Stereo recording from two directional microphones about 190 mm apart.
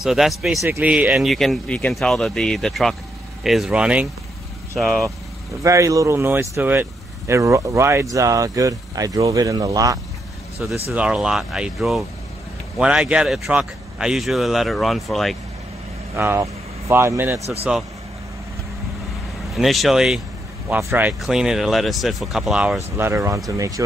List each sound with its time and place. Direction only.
0.0 s speech: centre (ahead or behind)
5.6 s speech: 15° right (ahead or behind)
10.6 s speech: 5° right (ahead or behind)
16.2 s speech: 15° right (ahead or behind)
19.5 s speech: centre (ahead or behind)
22.9 s speech: 15° right (ahead or behind)